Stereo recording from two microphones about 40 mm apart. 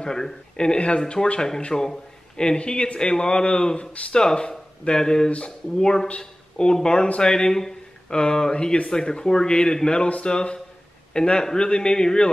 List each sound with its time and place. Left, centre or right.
0.0 s speech: centre
10.0 s speech: left
10.3 s speech: left